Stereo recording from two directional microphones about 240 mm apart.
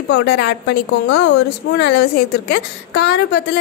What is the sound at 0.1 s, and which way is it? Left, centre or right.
A woman's voice, left.